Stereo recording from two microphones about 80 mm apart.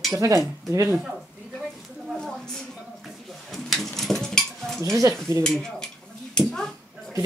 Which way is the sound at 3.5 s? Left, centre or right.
Centre.